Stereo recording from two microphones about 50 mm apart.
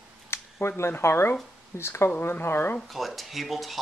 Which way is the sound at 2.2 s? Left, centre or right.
Left.